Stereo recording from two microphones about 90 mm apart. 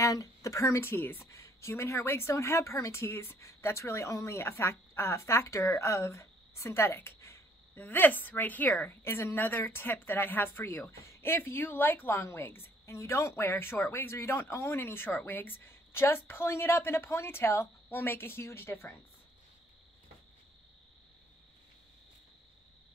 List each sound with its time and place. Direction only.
0.0 s speech: 35° left (ahead or behind); by 8.7 s 20° left (ahead or behind)
8.8 s speech: 30° left (ahead or behind)